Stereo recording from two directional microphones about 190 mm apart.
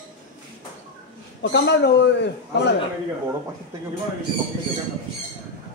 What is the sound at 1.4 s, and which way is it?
A man's voice, 65° left (ahead or behind).